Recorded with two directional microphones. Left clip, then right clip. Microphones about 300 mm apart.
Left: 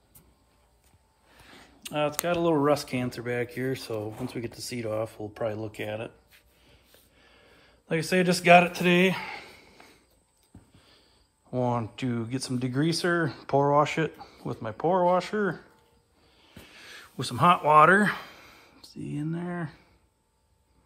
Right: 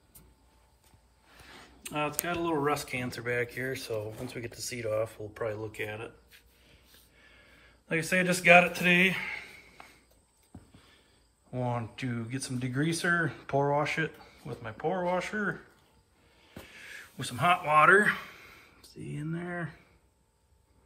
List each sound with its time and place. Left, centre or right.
1.6 s speech: centre
4.8 s speech: left
5.6 s speech: centre
7.3 s speech: centre
11.5 s speech: centre
16.6 s a sound: centre